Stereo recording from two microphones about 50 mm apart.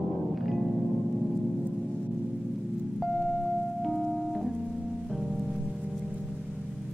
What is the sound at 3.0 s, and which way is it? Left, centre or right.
Music, centre.